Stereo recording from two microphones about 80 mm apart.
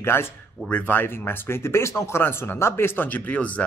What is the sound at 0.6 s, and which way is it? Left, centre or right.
Speech, centre.